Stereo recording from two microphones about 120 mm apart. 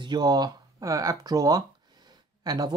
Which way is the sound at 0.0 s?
35° right (ahead or behind).